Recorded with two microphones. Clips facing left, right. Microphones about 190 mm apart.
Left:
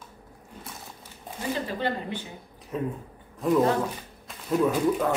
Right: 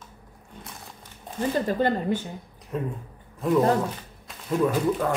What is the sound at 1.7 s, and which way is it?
Speech, 45° right (ahead or behind).